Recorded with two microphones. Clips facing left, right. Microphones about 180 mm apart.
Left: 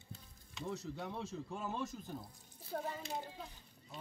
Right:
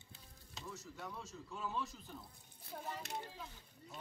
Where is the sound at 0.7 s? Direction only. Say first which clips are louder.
Left 6 dB; 65° left (ahead or behind); by 2.2 s 45° left (ahead or behind).